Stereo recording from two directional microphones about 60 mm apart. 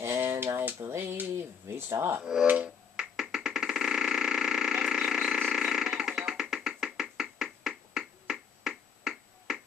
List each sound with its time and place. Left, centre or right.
0.0 s a sound: right
1.7 s speech: right
2.4 s finger snapping: right
3.0 s a sound: centre
5.5 s music: centre
6.5 s finger snapping: centre